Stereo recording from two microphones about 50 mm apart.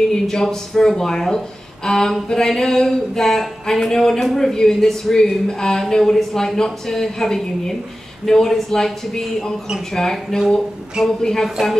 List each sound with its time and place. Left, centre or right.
0.1 s speech: centre